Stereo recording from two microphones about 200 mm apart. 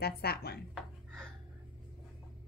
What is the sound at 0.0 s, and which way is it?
Speech, 50° left (ahead or behind).